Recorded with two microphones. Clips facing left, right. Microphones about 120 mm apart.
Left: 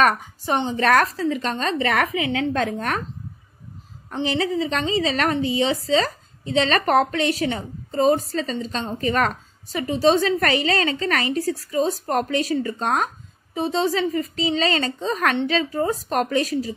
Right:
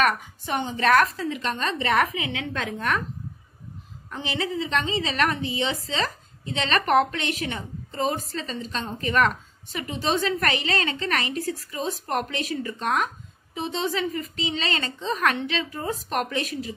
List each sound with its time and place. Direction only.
0.0 s a woman's voice: 40° left (ahead or behind)
4.1 s a woman's voice: 35° left (ahead or behind)